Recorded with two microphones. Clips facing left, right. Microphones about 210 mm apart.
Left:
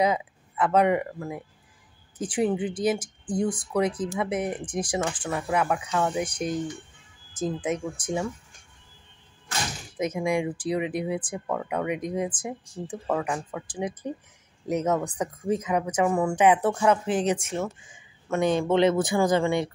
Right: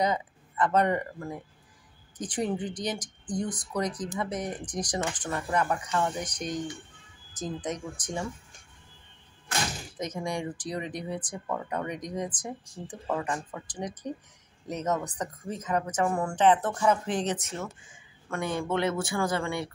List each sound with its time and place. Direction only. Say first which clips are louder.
0.0 s speech: left 4 dB; 5° left (ahead or behind)
9.9 s speech: left 8 dB; 10° left (ahead or behind)
18.3 s speech: left 7 dB; 20° left (ahead or behind)